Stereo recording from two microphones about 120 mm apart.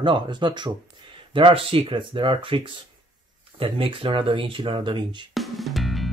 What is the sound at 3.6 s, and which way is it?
Speech, 50° right (ahead or behind).